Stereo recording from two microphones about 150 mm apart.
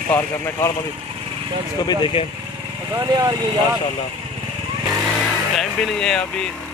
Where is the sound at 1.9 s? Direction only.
35° left (ahead or behind).